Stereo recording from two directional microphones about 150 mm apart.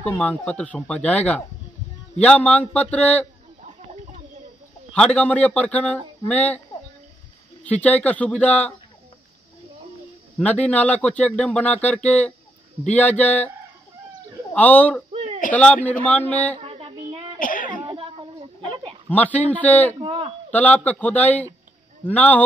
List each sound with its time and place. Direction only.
0.0 s speech: 10° left (ahead or behind)
4.9 s speech: 5° left (ahead or behind)
7.6 s speech: 10° left (ahead or behind)
10.4 s speech: 10° left (ahead or behind)
14.5 s a man's voice: 10° left (ahead or behind)
15.1 s a sound: 40° right (ahead or behind)
15.5 s speech: 10° left (ahead or behind)
16.6 s child singing: 40° right (ahead or behind)
17.4 s a sound: 65° left (ahead or behind)
17.8 s a sound: 35° right (ahead or behind)
19.0 s speech: 10° left (ahead or behind)
20.0 s a sound: 35° right (ahead or behind)
20.5 s speech: 10° left (ahead or behind)